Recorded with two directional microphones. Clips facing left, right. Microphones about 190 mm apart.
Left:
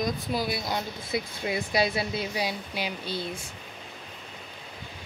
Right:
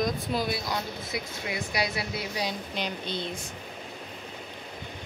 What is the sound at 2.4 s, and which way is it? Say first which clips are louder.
Speech: left 1 dB; 5° left (ahead or behind).